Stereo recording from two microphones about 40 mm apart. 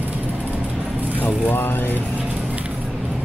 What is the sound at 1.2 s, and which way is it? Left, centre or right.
Speech, left.